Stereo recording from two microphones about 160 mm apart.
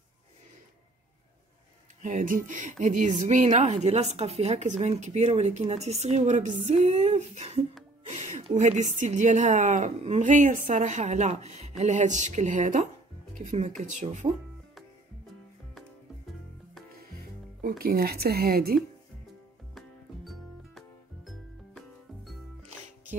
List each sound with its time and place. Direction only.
2.0 s speech: 55° right (ahead or behind)
17.6 s speech: 65° right (ahead or behind)
21.3 s music: centre (ahead or behind)